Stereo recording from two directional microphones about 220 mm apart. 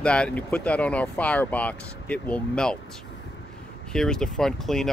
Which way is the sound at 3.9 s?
5° left (ahead or behind).